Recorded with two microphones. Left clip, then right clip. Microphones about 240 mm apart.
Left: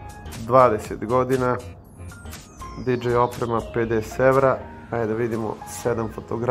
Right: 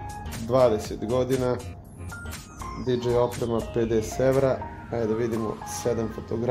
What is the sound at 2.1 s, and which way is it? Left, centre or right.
Music, centre.